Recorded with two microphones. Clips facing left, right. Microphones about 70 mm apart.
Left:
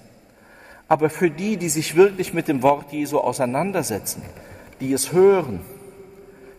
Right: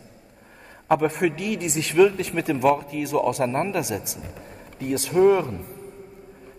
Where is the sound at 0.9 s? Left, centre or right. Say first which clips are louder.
Left 3 dB; left.